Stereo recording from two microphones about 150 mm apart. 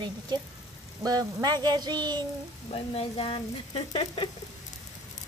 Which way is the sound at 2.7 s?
40° left (ahead or behind).